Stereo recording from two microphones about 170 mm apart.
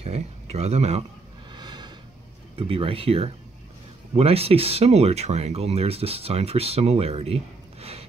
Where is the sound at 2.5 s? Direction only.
35° right (ahead or behind).